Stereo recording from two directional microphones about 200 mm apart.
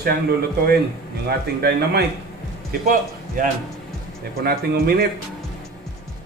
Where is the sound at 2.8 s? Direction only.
40° right (ahead or behind).